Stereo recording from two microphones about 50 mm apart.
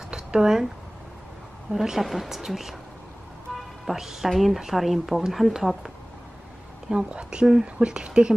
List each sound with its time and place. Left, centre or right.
0.1 s a sound: centre
1.7 s speech: centre
3.8 s a woman's voice: centre
6.9 s speech: centre